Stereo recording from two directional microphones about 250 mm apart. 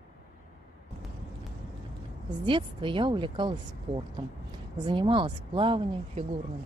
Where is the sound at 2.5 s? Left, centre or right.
Centre.